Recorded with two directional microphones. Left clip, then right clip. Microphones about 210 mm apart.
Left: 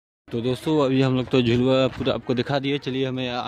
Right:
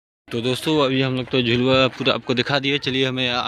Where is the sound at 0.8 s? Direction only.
30° left (ahead or behind).